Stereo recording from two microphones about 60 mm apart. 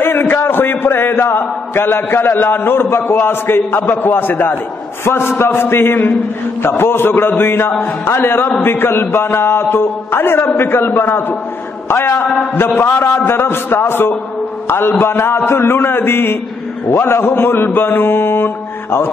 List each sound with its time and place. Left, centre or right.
0.0 s a man's voice: left